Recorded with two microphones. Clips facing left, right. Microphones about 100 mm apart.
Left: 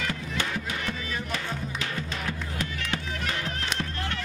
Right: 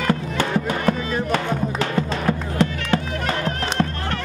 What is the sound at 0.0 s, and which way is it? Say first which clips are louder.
Music: right 9 dB; 50° right (ahead or behind).